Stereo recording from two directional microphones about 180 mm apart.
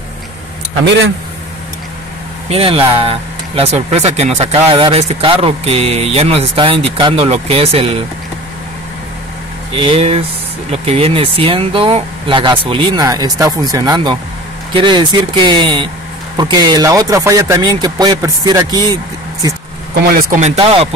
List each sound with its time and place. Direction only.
2.5 s speech: 30° right (ahead or behind)
9.8 s speech: 30° right (ahead or behind)
20.2 s speech: 45° right (ahead or behind)